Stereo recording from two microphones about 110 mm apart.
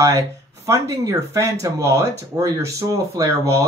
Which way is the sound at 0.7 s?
30° right (ahead or behind).